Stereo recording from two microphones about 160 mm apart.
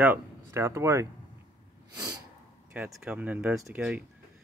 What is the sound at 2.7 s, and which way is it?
Speech, 5° right (ahead or behind).